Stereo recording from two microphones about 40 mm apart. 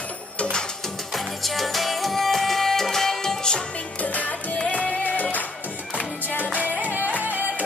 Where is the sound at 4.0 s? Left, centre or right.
Left.